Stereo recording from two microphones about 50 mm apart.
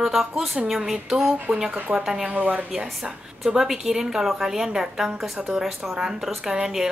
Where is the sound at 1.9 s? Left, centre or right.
Centre.